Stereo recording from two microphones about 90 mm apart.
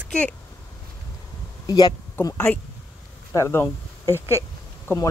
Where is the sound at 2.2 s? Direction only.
25° left (ahead or behind).